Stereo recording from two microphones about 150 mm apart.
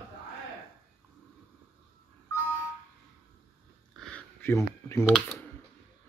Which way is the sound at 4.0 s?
10° left (ahead or behind).